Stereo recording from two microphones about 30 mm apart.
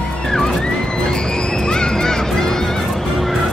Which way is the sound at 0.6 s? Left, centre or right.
Left.